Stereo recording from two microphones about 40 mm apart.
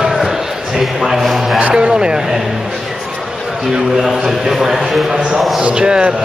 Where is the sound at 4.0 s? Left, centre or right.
Centre.